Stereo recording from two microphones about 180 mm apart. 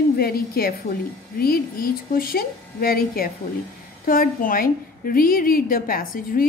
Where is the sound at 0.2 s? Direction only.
55° left (ahead or behind).